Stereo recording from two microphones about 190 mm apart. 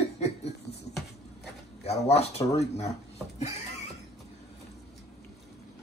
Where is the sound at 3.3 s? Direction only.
35° left (ahead or behind).